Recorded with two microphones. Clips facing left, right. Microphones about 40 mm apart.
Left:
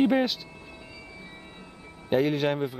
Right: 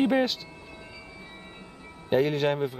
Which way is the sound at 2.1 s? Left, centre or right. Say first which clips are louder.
Even; centre.